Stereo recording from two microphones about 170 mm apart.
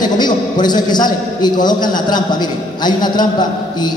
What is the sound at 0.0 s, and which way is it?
A man's voice, 25° left (ahead or behind).